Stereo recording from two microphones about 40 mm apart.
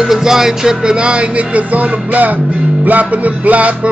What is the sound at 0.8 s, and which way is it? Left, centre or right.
Music, right.